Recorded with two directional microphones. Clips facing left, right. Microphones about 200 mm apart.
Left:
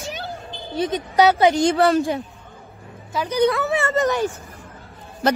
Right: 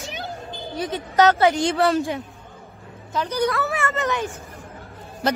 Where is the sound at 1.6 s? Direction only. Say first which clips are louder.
Left 3 dB; 45° left (ahead or behind).